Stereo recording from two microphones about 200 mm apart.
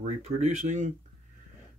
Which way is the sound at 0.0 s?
35° right (ahead or behind).